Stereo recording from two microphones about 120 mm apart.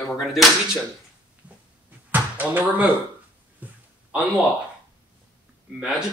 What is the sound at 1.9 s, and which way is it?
Basketball bounce, 15° right (ahead or behind).